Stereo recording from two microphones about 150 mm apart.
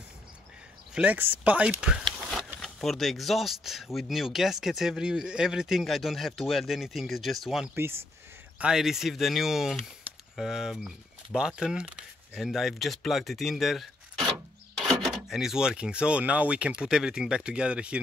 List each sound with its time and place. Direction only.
0.9 s speech: 10° right (ahead or behind)
7.7 s speech: 15° right (ahead or behind)
8.5 s speech: 5° right (ahead or behind)